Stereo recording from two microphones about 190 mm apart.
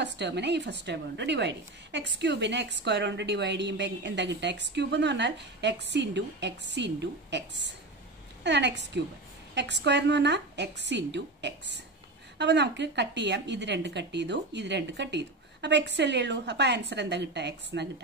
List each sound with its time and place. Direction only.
0.0 s a woman's voice: 65° right (ahead or behind)